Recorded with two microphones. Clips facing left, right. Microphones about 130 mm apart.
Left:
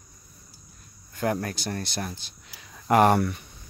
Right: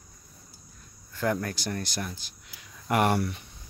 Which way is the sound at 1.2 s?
25° left (ahead or behind).